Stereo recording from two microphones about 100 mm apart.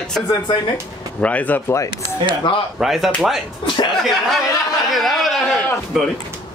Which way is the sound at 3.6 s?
50° left (ahead or behind).